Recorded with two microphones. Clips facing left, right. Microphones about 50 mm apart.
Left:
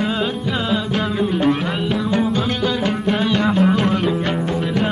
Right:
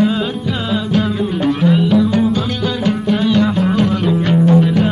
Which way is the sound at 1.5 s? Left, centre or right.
Centre.